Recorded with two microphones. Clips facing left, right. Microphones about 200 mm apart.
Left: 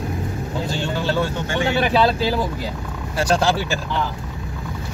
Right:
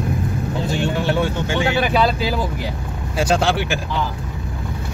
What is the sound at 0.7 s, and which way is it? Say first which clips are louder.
Vehicle: right 3 dB; 20° right (ahead or behind).